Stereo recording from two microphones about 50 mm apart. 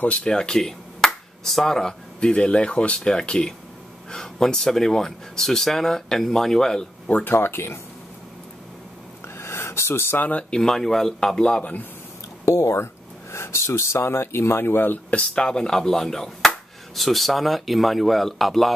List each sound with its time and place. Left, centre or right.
0.0 s speech: centre
2.1 s speech: left
7.6 s speech: left
9.4 s a sound: left
10.5 s speech: centre
12.4 s speech: left
15.0 s speech: left
15.4 s speech: centre